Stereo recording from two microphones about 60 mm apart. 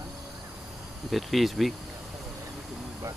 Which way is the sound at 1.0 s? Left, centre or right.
Centre.